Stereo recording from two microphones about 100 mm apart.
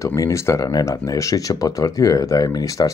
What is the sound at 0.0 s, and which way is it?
Speech, 30° left (ahead or behind).